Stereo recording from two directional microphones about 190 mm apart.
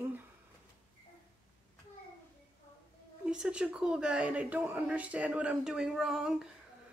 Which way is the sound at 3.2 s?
5° right (ahead or behind).